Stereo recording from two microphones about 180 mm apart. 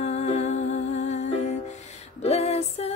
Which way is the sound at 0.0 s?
40° left (ahead or behind).